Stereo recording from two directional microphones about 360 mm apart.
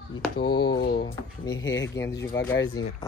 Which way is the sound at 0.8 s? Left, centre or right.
Left.